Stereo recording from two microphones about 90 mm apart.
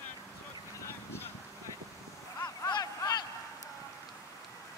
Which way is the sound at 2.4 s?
45° left (ahead or behind).